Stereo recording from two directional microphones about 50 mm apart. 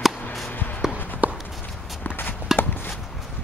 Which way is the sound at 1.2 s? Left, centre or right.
Right.